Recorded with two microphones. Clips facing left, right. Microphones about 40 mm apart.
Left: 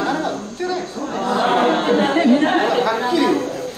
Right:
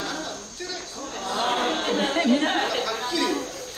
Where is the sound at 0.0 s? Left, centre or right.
Left.